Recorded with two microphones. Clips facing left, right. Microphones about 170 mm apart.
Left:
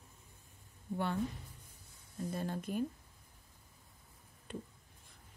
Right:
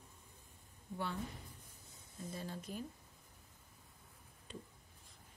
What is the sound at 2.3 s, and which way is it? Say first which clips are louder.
Speech: left 7 dB; 55° left (ahead or behind).